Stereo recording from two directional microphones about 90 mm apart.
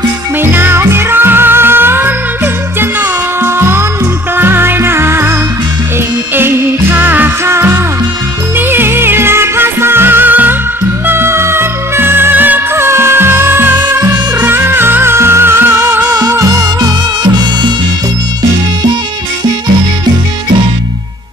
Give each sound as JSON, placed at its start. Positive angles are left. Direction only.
{"t": 0.4, "sound": "music", "side_deg": -25}
{"t": 6.3, "sound": "music", "side_deg": -25}